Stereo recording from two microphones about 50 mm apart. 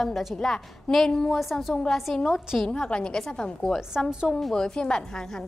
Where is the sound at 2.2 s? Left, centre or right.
Centre.